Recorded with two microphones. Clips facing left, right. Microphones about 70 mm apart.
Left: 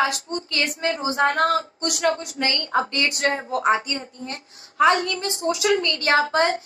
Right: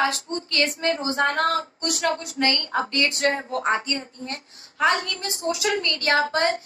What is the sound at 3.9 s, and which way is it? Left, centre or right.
Speech, right.